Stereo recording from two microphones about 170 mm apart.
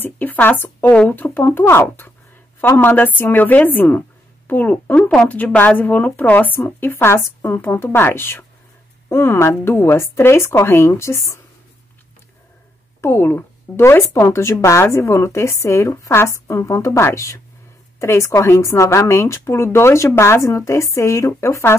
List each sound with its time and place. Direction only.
0.0 s a woman's voice: 10° left (ahead or behind)
13.0 s a woman's voice: 15° left (ahead or behind)